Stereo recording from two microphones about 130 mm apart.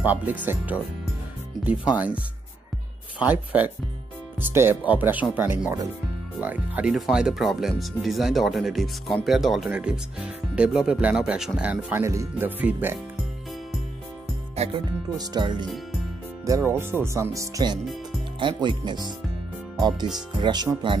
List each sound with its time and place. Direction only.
0.0 s speech: 10° right (ahead or behind)
12.0 s speech: 20° right (ahead or behind)
14.5 s music: 55° right (ahead or behind)
15.1 s speech: 35° right (ahead or behind)
18.4 s speech: 40° right (ahead or behind)
20.2 s speech: 35° right (ahead or behind)